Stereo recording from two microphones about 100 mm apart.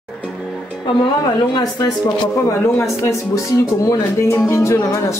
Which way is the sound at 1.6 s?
40° left (ahead or behind).